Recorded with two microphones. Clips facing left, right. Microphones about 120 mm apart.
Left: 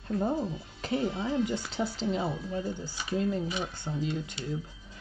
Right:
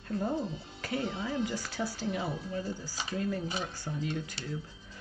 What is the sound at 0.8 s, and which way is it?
Speech, 25° left (ahead or behind).